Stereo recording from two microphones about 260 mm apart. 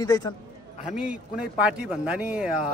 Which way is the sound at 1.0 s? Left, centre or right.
Centre.